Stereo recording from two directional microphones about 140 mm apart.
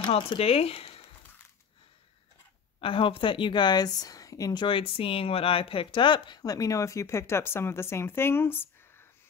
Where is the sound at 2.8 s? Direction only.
40° left (ahead or behind); by 8.6 s 15° left (ahead or behind).